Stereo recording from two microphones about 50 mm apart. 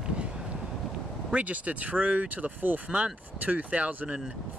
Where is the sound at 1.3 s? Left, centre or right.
Right.